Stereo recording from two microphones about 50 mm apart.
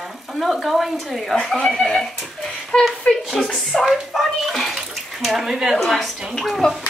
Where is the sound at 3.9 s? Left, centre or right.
Centre.